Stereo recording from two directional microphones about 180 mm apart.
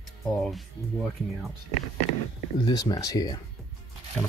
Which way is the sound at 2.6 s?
20° left (ahead or behind).